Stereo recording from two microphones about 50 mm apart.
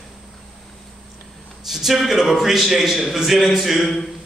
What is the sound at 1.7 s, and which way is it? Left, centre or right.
A man's voice, centre.